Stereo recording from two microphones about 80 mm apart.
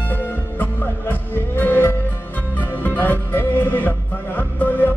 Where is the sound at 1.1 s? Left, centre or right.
Left.